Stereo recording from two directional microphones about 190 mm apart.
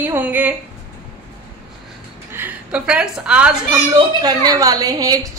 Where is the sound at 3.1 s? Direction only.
5° right (ahead or behind).